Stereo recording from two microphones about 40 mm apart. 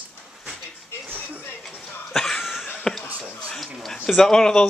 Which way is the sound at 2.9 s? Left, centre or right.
Centre.